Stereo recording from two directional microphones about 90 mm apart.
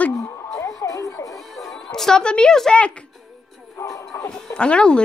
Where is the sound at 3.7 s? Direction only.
35° left (ahead or behind).